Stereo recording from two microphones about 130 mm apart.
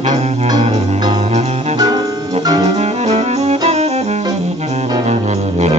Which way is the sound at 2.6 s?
55° right (ahead or behind).